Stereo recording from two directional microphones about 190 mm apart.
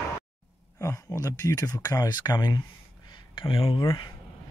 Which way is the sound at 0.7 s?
15° left (ahead or behind).